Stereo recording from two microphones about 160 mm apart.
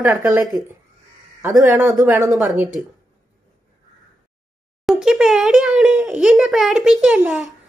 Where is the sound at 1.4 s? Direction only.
20° right (ahead or behind).